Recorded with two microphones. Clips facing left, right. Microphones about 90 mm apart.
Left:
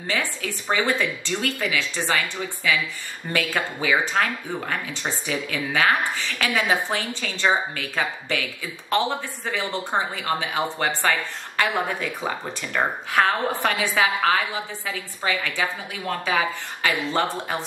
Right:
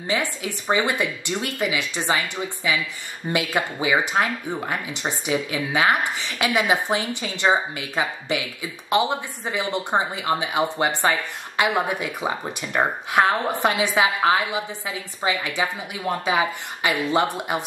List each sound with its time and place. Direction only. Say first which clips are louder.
0.0 s speech: right 2 dB; 20° right (ahead or behind)